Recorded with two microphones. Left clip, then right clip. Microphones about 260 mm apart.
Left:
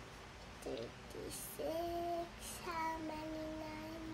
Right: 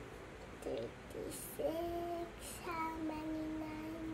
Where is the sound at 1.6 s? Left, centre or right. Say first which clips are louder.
Right 3 dB; centre.